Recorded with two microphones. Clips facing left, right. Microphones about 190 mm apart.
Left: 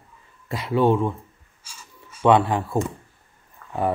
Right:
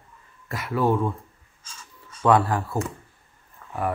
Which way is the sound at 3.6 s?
5° right (ahead or behind).